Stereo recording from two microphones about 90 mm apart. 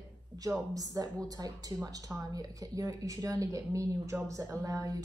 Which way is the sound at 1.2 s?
45° right (ahead or behind).